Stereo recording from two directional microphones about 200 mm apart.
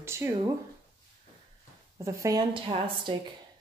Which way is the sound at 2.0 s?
15° right (ahead or behind).